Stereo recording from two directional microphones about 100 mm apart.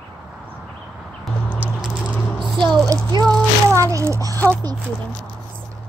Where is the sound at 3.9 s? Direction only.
30° right (ahead or behind).